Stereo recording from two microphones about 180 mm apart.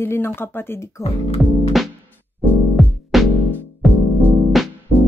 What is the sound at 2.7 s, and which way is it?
Music, centre (ahead or behind).